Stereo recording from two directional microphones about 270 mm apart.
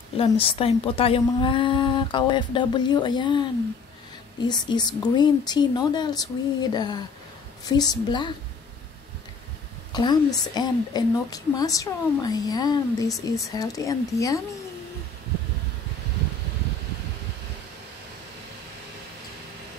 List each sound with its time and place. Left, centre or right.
0.2 s speech: centre
9.9 s speech: centre